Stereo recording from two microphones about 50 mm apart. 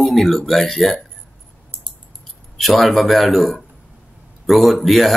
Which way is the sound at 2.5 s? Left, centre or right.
Centre.